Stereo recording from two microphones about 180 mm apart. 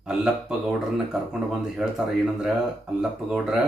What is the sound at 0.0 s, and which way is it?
Speech, centre (ahead or behind).